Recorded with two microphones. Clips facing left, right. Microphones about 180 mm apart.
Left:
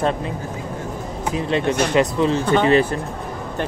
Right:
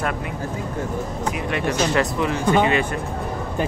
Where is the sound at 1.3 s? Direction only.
25° left (ahead or behind).